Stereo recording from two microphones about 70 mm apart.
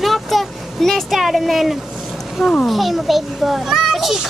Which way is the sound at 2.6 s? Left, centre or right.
Centre.